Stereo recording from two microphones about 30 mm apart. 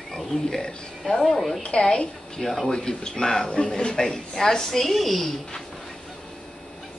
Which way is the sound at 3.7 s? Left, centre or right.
Left.